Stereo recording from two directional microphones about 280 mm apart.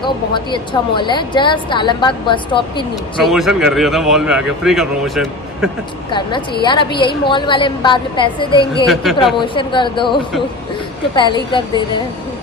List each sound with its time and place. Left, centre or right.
0.0 s a woman's voice: centre
3.3 s a man's voice: centre
6.6 s a woman's voice: centre
8.8 s a man's voice: centre
9.4 s a woman's voice: centre